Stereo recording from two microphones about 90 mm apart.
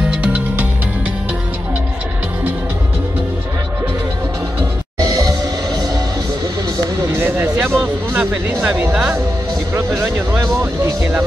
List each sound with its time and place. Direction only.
0.1 s music: 15° right (ahead or behind)
4.9 s music: 45° right (ahead or behind)
7.2 s vehicle: 20° right (ahead or behind)
7.4 s a sound: 20° right (ahead or behind)
8.2 s speech: 15° right (ahead or behind)
9.8 s speech: 30° right (ahead or behind)